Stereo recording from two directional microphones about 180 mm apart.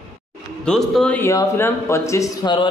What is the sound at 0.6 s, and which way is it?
A man's voice, 5° left (ahead or behind).